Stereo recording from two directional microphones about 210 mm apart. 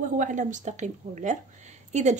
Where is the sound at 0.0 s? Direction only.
35° right (ahead or behind).